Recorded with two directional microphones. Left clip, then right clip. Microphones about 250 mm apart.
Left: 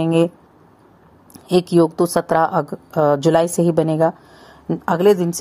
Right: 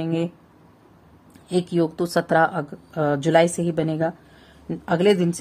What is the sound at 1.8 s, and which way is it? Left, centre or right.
A woman's voice, centre.